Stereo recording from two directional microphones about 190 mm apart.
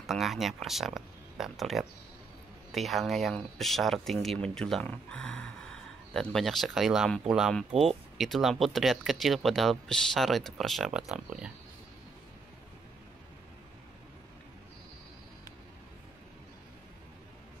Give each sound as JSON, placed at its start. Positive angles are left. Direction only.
{"t": 0.0, "sound": "speech", "side_deg": 0}